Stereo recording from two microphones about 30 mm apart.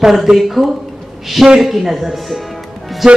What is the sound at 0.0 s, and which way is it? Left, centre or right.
Speech, centre.